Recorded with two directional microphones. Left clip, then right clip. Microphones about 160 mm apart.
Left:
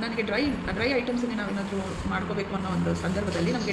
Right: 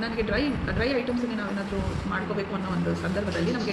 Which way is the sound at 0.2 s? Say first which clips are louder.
Even; 15° left (ahead or behind).